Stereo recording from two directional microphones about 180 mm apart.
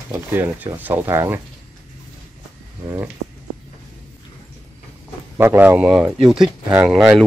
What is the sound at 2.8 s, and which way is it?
Speech, 15° right (ahead or behind).